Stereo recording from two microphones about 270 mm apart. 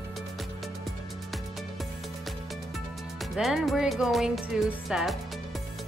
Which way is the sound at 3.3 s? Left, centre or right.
Centre.